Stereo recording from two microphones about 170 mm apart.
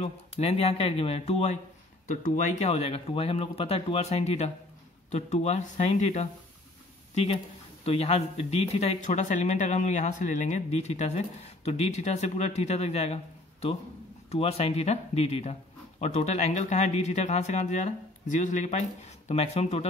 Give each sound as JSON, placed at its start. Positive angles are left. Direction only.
{"t": 0.0, "sound": "speech", "side_deg": 35}
{"t": 2.0, "sound": "speech", "side_deg": 50}
{"t": 7.8, "sound": "speech", "side_deg": 35}